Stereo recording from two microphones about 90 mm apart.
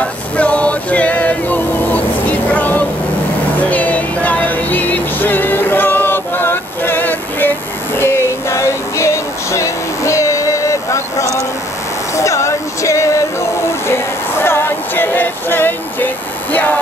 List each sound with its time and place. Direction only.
0.0 s male singing: 15° left (ahead or behind)
3.7 s music: 15° left (ahead or behind); by 11.4 s 35° left (ahead or behind)
12.2 s a sound: 35° left (ahead or behind)